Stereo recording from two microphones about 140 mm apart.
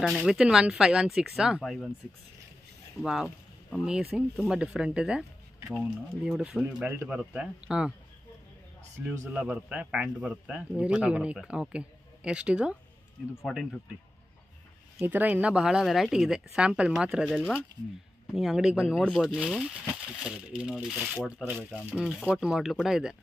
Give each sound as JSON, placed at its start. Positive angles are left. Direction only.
{"t": 0.0, "sound": "speech", "side_deg": 0}
{"t": 3.0, "sound": "a man's voice", "side_deg": 0}
{"t": 9.3, "sound": "a man's voice", "side_deg": -10}
{"t": 15.0, "sound": "speech", "side_deg": -15}